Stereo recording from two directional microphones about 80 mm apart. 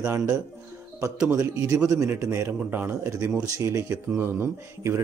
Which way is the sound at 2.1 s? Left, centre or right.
Right.